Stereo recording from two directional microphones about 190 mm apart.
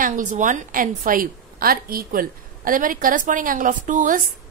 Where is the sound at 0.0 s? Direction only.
40° right (ahead or behind).